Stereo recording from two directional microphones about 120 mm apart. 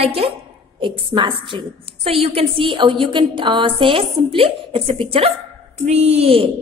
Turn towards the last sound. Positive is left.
turn(degrees=-50)  # may be behind; listen again after turning